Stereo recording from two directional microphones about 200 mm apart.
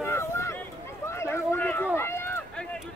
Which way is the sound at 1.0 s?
15° left (ahead or behind).